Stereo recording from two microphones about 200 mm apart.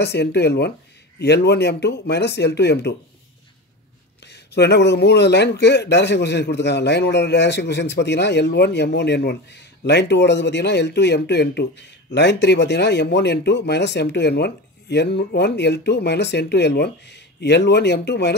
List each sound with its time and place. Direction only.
0.0 s a man's voice: 55° left (ahead or behind)
4.3 s a man's voice: 55° left (ahead or behind)